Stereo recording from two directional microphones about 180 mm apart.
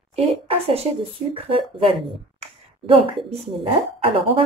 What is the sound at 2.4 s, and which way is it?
Clicking, 35° right (ahead or behind).